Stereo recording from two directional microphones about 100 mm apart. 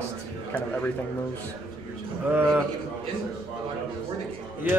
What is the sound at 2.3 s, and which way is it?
Speech, 20° right (ahead or behind).